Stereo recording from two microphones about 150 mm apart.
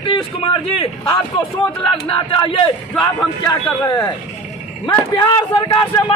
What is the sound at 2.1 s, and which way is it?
A man's voice, 35° left (ahead or behind).